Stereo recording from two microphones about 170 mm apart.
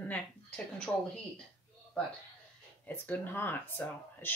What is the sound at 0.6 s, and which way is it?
Speech, 5° left (ahead or behind).